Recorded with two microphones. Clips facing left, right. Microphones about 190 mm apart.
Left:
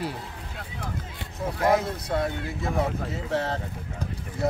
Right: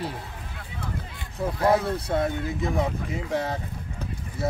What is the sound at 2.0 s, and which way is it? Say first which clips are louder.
Speech: right 2 dB; 20° right (ahead or behind).